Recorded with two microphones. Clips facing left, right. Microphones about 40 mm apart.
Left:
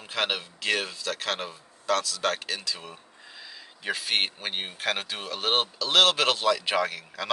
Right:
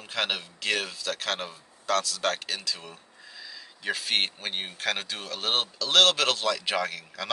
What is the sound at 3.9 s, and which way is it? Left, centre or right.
Speech, centre.